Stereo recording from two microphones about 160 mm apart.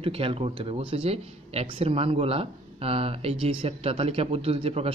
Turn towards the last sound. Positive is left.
turn(degrees=-40)  # may be behind; listen again after turning